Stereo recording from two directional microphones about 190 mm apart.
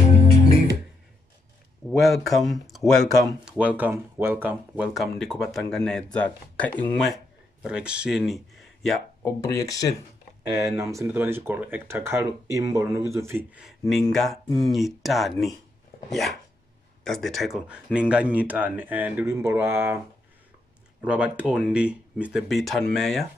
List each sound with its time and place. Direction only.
1.9 s speech: centre (ahead or behind)
7.6 s speech: 5° right (ahead or behind)
9.2 s speech: 15° left (ahead or behind)
10.5 s speech: 15° right (ahead or behind)
21.0 s speech: 5° right (ahead or behind)